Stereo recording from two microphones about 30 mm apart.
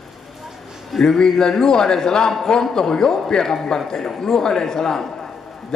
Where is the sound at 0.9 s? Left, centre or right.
Centre.